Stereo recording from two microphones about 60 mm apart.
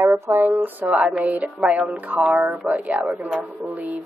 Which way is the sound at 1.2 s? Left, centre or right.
Right.